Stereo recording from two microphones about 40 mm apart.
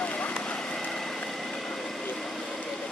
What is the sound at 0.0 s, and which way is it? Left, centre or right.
Vehicle, left.